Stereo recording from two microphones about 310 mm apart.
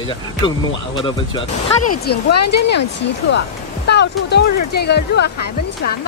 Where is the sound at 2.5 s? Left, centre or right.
Left.